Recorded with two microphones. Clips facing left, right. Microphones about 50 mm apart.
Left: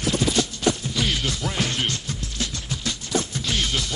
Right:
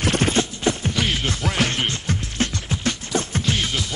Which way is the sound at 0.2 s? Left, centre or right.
Right.